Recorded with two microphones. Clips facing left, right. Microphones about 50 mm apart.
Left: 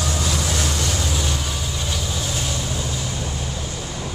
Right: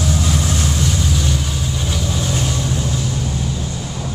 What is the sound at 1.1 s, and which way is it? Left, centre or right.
Vehicle, centre.